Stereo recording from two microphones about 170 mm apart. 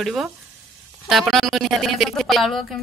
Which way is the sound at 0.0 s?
Centre (ahead or behind).